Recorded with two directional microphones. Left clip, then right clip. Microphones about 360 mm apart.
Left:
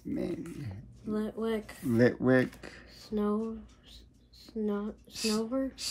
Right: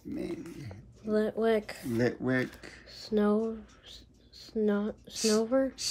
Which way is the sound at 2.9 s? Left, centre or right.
Right.